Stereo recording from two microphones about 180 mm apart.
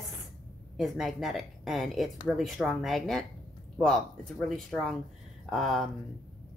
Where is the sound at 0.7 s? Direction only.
Centre (ahead or behind).